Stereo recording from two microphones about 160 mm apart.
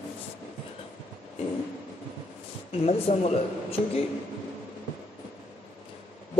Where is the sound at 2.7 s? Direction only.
40° left (ahead or behind).